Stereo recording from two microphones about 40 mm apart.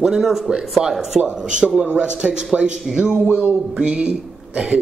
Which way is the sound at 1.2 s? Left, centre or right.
Right.